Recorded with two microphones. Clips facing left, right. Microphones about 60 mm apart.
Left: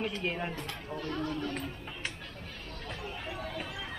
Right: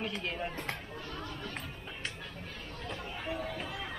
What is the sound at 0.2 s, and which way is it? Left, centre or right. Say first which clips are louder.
Speech: left 3 dB; centre.